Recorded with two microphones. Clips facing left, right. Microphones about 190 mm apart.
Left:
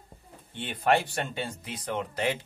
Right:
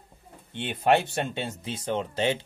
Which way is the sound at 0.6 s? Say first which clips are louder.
Right 3 dB; 25° right (ahead or behind).